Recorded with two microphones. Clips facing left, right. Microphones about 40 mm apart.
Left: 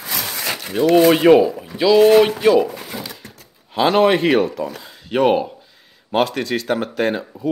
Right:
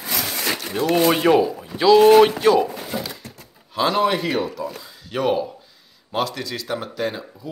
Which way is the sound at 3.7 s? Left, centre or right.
Left.